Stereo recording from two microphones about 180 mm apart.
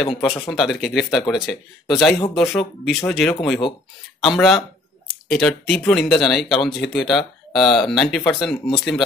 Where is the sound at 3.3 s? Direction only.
15° left (ahead or behind).